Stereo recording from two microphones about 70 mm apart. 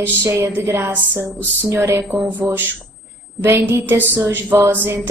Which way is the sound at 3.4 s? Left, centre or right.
Right.